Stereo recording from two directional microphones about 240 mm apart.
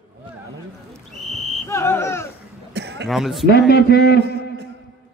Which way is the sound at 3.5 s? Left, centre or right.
Left.